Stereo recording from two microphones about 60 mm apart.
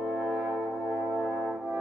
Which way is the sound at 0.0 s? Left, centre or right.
Centre.